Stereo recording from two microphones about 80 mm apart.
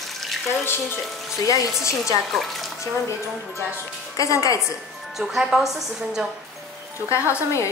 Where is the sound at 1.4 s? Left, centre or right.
Left.